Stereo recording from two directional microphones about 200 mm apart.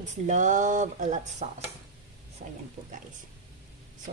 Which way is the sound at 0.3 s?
40° right (ahead or behind).